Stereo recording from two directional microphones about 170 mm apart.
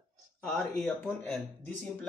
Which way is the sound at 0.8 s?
10° left (ahead or behind).